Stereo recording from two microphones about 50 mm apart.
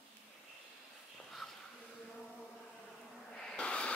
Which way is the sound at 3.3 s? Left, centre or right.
Centre.